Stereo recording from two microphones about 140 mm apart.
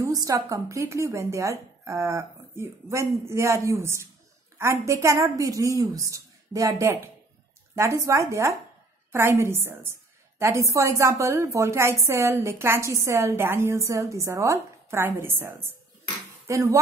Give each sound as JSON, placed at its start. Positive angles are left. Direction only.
{"t": 0.0, "sound": "a woman's voice", "side_deg": -25}